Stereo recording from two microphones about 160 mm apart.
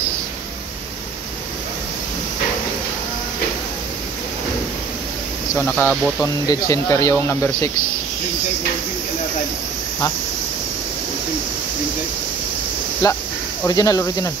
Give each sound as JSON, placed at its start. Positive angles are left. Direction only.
{"t": 5.6, "sound": "speech", "side_deg": 10}
{"t": 13.0, "sound": "speech", "side_deg": 25}